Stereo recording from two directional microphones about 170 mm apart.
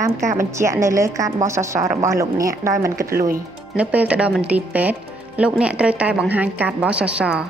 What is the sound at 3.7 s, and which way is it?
Speech, 5° right (ahead or behind).